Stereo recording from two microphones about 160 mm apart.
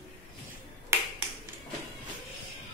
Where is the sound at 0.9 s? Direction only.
15° right (ahead or behind).